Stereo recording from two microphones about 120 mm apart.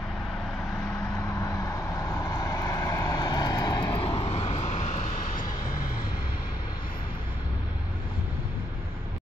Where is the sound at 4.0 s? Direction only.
50° left (ahead or behind); by 5.1 s 90° left.